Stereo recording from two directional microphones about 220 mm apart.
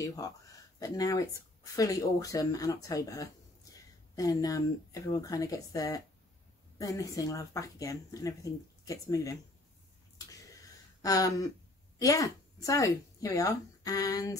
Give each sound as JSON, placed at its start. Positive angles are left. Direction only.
{"t": 0.0, "sound": "speech", "side_deg": 15}
{"t": 11.0, "sound": "speech", "side_deg": 15}